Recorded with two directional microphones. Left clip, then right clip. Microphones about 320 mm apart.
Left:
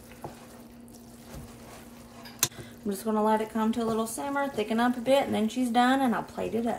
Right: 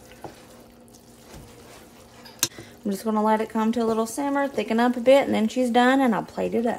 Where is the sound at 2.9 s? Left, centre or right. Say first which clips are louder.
Right 4 dB; right.